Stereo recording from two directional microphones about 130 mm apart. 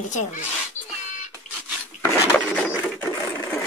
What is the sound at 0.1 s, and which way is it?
Speech, 70° left (ahead or behind).